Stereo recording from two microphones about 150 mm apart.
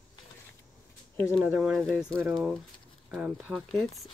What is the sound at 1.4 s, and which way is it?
Speech, 5° right (ahead or behind).